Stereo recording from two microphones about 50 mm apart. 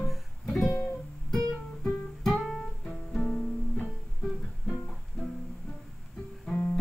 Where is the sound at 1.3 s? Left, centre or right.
Centre.